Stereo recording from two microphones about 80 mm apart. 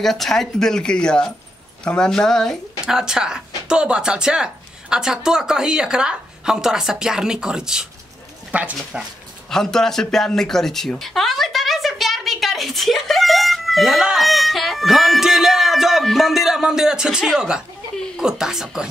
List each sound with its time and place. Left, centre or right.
0.0 s speech: centre
2.8 s speech: centre
9.5 s speech: centre